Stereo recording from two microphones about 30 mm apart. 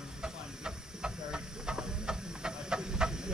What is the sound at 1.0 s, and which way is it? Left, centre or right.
Steam, right.